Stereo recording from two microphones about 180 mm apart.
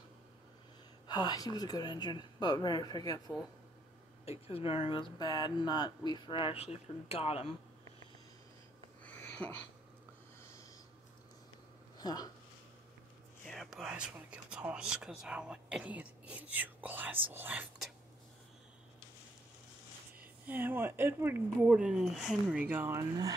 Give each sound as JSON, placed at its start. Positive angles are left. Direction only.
{"t": 1.0, "sound": "speech", "side_deg": 25}
{"t": 4.3, "sound": "speech", "side_deg": 30}
{"t": 9.0, "sound": "a sound", "side_deg": 10}
{"t": 12.0, "sound": "speech", "side_deg": 20}
{"t": 13.5, "sound": "speech", "side_deg": 0}
{"t": 20.2, "sound": "speech", "side_deg": -10}